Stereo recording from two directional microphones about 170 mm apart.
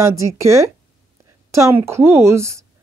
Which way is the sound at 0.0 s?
20° right (ahead or behind).